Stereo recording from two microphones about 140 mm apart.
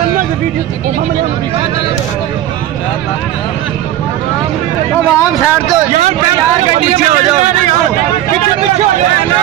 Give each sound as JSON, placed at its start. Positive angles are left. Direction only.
{"t": 5.1, "sound": "speech", "side_deg": 15}
{"t": 6.7, "sound": "a man's voice", "side_deg": -50}